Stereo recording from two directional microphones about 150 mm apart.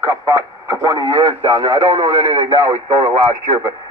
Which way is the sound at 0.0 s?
25° right (ahead or behind).